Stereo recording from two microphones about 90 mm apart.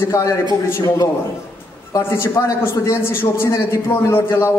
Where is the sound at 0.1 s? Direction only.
40° left (ahead or behind).